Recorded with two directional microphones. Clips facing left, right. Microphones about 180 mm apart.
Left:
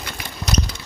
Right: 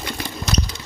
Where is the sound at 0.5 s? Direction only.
45° left (ahead or behind).